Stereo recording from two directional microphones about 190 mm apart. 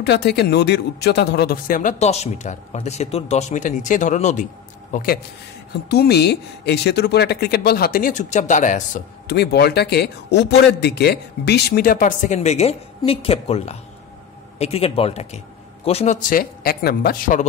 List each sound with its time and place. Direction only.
0.0 s speech: 60° left (ahead or behind); by 4.5 s 40° left (ahead or behind)
4.9 s a man's voice: 50° left (ahead or behind)
9.3 s a man's voice: 55° left (ahead or behind)